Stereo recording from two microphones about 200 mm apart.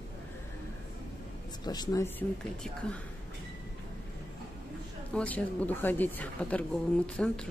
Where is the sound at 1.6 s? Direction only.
20° left (ahead or behind).